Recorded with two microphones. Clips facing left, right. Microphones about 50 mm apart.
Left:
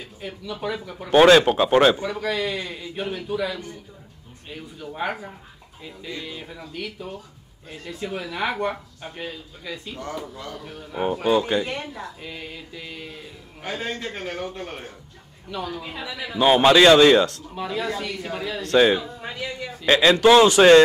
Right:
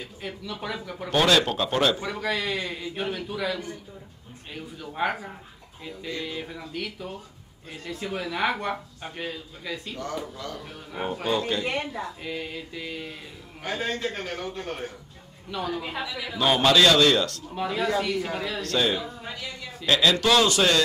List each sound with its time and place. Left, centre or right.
0.2 s speech: centre
1.1 s a man's voice: left
2.0 s speech: centre
10.3 s a man's voice: centre
10.6 s speech: centre
11.2 s a man's voice: left
11.6 s a woman's voice: right
12.2 s speech: centre
13.6 s a man's voice: centre
15.5 s a woman's voice: centre
16.3 s a man's voice: left
17.6 s speech: centre
18.6 s a man's voice: left